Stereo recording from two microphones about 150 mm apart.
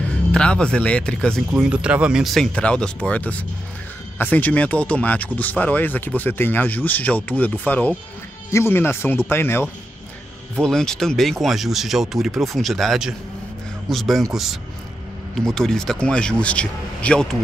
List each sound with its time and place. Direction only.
0.3 s speech: 5° left (ahead or behind)
1.5 s speech: 5° right (ahead or behind); by 9.7 s 15° left (ahead or behind)
10.5 s speech: 5° left (ahead or behind)